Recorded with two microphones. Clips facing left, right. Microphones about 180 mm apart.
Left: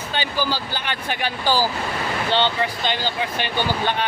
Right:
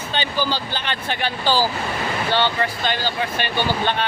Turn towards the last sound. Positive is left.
turn(degrees=15)  # may be behind; listen again after turning